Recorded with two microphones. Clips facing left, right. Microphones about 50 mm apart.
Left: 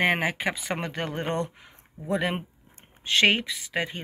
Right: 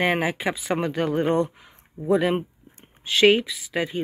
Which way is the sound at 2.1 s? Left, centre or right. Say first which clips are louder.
Right 6 dB; left.